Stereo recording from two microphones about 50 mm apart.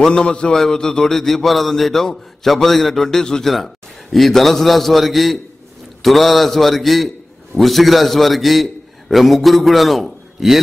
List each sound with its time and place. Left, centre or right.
0.0 s a man's voice: centre